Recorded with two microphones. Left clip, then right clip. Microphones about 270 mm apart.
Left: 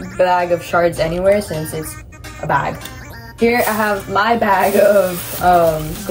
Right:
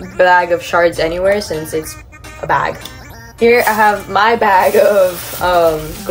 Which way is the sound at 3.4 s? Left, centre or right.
Right.